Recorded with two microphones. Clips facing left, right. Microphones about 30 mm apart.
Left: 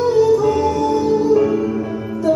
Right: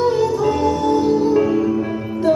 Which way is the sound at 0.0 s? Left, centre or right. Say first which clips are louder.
Left 3 dB; right.